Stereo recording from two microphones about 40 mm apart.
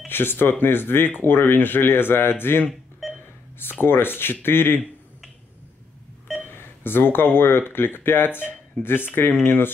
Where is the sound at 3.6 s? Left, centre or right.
Left.